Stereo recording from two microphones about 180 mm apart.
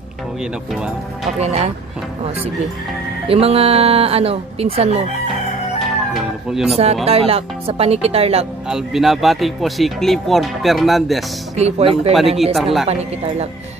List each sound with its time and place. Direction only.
1.4 s speech: 35° right (ahead or behind)
3.3 s speech: 35° right (ahead or behind)
6.1 s speech: centre (ahead or behind)
7.1 s speech: 35° right (ahead or behind)
8.6 s speech: 5° right (ahead or behind)
11.5 s speech: 35° right (ahead or behind)
12.1 s speech: centre (ahead or behind)
12.8 s speech: 35° right (ahead or behind)